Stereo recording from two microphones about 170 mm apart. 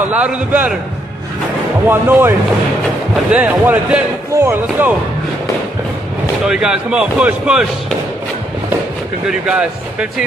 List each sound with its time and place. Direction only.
0.1 s speech: 10° right (ahead or behind)
1.9 s speech: 15° right (ahead or behind)
6.4 s speech: 5° right (ahead or behind)
9.3 s speech: 5° right (ahead or behind)